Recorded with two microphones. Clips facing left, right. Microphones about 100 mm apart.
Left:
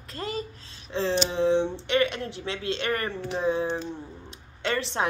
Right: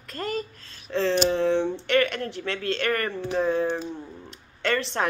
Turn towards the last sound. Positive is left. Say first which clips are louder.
# right 2 dB
turn(degrees=20)  # may be behind; listen again after turning